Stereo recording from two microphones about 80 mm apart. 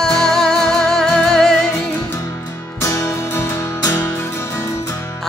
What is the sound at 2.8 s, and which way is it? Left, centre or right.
Music, left.